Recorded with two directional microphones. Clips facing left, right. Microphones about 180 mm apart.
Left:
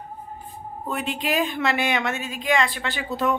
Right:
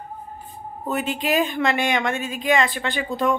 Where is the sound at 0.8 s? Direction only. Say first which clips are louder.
Right 3 dB; centre (ahead or behind).